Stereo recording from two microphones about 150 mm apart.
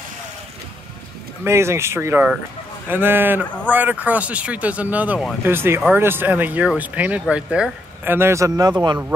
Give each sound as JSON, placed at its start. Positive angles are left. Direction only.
{"t": 1.4, "sound": "speech", "side_deg": -20}